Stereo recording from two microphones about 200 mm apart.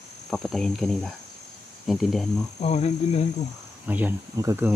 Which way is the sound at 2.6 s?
35° left (ahead or behind).